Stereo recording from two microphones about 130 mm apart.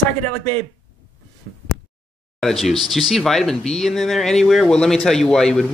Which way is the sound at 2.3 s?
Centre (ahead or behind).